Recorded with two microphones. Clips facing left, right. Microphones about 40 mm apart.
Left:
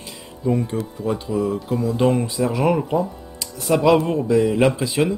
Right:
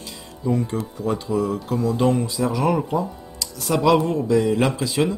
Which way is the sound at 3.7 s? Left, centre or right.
Centre.